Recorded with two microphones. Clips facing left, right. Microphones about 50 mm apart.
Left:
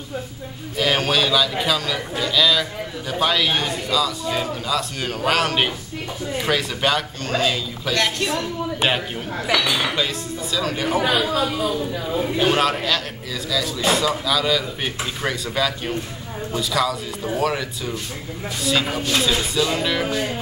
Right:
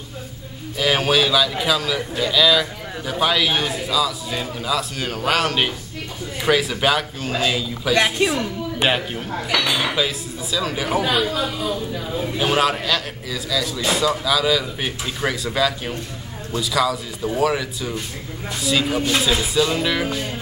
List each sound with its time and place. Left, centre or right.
0.7 s a man's voice: centre
7.9 s speech: centre
8.8 s a man's voice: centre